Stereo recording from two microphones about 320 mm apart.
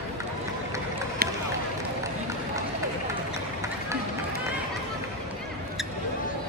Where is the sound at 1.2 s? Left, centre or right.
Right.